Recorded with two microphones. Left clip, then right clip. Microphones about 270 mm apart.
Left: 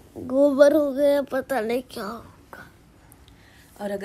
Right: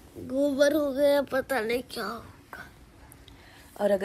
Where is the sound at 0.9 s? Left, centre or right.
Centre.